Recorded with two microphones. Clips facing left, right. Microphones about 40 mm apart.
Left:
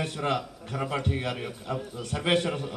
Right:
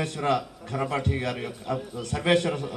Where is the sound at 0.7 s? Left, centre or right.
Centre.